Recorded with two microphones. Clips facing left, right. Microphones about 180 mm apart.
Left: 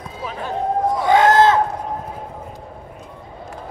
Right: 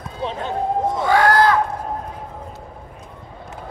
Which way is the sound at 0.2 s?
25° right (ahead or behind).